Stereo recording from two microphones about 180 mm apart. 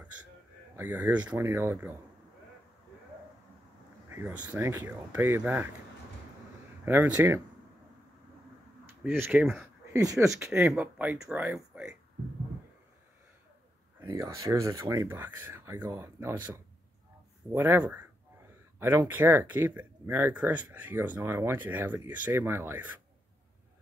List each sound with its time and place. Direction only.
0.7 s speech: 10° right (ahead or behind)
4.1 s speech: 10° right (ahead or behind)
6.8 s speech: 15° right (ahead or behind)
9.0 s speech: 10° right (ahead or behind)
9.9 s speech: 20° right (ahead or behind)
10.6 s speech: 5° right (ahead or behind)
14.0 s speech: 15° right (ahead or behind)
17.5 s speech: 10° right (ahead or behind)